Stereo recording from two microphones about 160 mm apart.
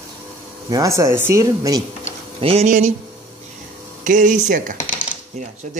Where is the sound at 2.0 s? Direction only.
40° right (ahead or behind).